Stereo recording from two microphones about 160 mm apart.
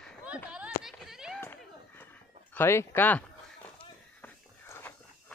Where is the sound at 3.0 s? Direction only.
10° left (ahead or behind).